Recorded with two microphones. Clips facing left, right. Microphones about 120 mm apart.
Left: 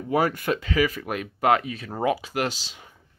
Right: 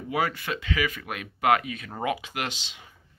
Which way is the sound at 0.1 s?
45° left (ahead or behind).